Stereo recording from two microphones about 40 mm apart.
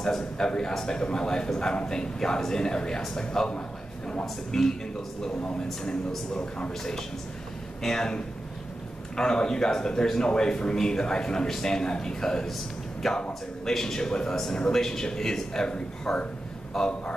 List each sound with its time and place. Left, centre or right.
0.0 s a man's voice: centre
6.8 s speech: centre
9.1 s speech: centre
13.0 s speech: centre